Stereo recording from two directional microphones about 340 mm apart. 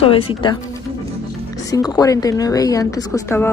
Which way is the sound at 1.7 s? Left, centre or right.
Centre.